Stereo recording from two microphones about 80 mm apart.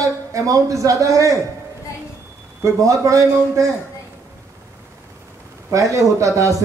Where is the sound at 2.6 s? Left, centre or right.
Right.